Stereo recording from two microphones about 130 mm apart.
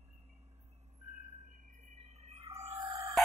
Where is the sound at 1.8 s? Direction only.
60° right (ahead or behind).